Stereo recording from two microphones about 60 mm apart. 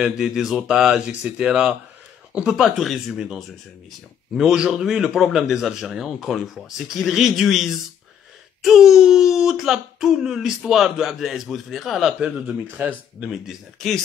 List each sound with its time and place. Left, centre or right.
0.0 s speech: centre
12.2 s speech: centre